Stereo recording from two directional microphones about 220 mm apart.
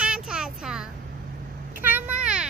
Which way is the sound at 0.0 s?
5° right (ahead or behind).